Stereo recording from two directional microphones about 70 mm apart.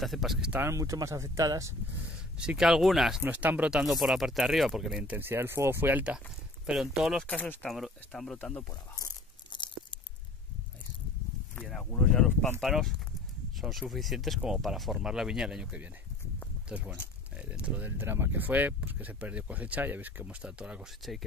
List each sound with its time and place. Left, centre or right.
0.0 s speech: centre
0.7 s speech: right
2.0 s speech: centre
3.3 s speech: right
3.7 s speech: centre
5.0 s speech: right
6.6 s speech: centre
7.2 s speech: left
7.7 s speech: centre
8.4 s speech: centre
8.9 s tearing: left
12.0 s speech: centre
12.5 s speech: centre
21.0 s speech: centre